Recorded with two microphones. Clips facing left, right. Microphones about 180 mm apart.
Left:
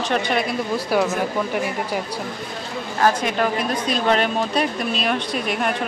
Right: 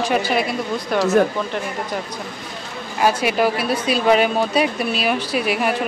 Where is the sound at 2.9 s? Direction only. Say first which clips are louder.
Right 2 dB; 10° right (ahead or behind).